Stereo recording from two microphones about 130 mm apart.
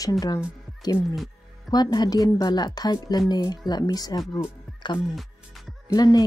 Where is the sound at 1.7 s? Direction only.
30° left (ahead or behind).